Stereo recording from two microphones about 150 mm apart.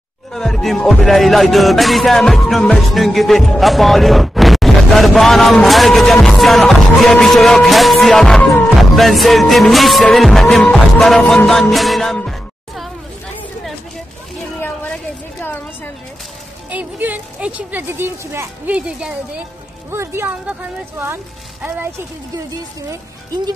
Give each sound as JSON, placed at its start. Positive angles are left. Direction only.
{"t": 0.3, "sound": "music", "side_deg": 0}
{"t": 14.6, "sound": "a sound", "side_deg": 10}
{"t": 16.7, "sound": "speech", "side_deg": -10}
{"t": 22.5, "sound": "speech", "side_deg": -25}